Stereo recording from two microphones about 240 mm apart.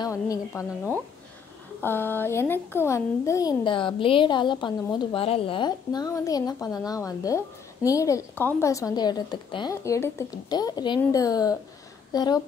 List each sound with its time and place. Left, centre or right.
0.0 s a child's voice: centre
1.8 s a child's voice: centre